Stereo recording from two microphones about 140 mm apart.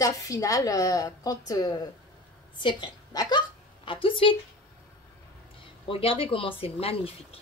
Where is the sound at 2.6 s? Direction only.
35° left (ahead or behind).